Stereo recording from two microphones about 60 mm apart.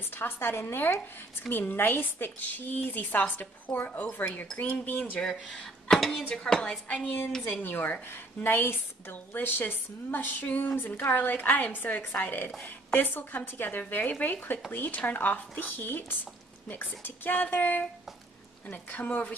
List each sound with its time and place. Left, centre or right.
0.1 s a woman's voice: left
5.2 s speech: centre
7.4 s a woman's voice: left